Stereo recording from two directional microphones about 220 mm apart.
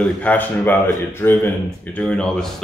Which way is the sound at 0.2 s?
5° left (ahead or behind).